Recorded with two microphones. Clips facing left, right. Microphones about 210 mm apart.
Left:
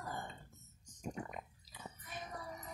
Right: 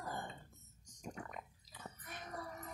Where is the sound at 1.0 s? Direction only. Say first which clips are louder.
Left 4 dB; 20° left (ahead or behind).